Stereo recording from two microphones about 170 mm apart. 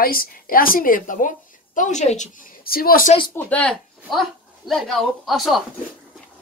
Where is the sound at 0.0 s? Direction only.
60° left (ahead or behind).